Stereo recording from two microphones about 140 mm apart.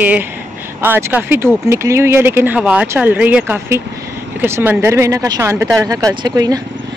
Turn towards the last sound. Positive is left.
turn(degrees=-25)  # may be behind; listen again after turning